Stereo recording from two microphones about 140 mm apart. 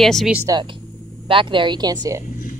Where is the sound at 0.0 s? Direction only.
Centre (ahead or behind).